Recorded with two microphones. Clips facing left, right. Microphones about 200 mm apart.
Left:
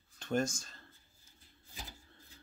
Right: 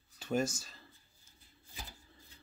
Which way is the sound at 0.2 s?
5° right (ahead or behind).